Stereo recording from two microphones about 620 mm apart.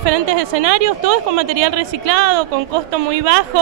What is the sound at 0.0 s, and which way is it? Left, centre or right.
Speech, right.